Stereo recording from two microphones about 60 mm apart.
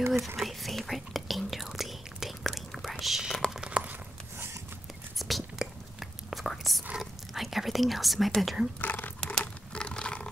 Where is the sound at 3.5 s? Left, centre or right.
Centre.